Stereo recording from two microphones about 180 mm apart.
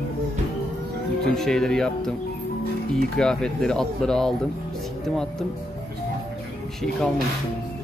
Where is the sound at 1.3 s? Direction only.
Centre (ahead or behind).